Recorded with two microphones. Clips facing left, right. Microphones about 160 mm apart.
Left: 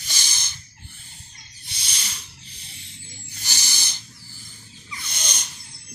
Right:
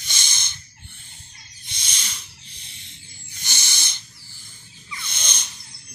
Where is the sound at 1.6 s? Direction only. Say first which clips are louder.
Even; 35° left (ahead or behind).